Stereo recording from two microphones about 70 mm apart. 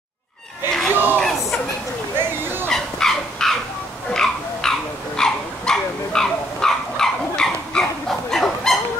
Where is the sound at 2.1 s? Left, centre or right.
Right.